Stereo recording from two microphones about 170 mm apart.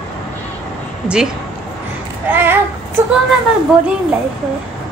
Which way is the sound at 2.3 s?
10° right (ahead or behind).